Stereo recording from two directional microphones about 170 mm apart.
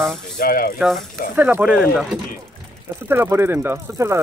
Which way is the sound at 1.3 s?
10° right (ahead or behind).